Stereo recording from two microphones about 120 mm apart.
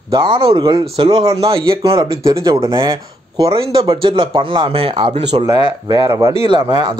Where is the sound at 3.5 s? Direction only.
45° right (ahead or behind).